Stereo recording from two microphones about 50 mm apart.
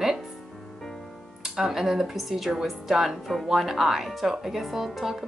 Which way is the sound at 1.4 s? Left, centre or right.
Centre.